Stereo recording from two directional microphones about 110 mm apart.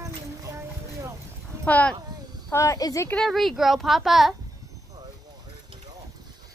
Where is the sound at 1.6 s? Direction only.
15° left (ahead or behind).